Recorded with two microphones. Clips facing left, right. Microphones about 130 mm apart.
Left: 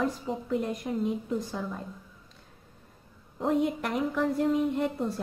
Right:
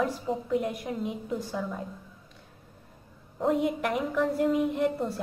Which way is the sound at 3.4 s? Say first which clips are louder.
Right 1 dB; centre (ahead or behind).